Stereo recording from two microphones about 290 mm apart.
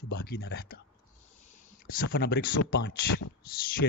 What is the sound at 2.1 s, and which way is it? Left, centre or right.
Speech, left.